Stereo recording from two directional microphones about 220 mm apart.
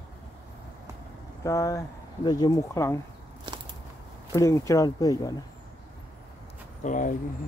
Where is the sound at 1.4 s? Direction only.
15° left (ahead or behind).